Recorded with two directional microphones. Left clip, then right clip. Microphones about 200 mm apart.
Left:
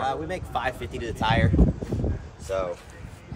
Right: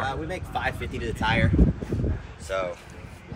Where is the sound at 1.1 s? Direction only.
45° left (ahead or behind).